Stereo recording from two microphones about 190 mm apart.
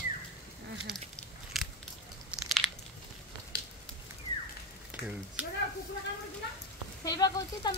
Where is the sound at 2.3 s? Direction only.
5° right (ahead or behind).